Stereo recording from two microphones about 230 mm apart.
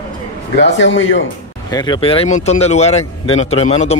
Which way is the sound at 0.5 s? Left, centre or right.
Left.